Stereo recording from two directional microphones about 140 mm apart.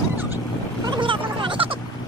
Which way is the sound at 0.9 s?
35° right (ahead or behind).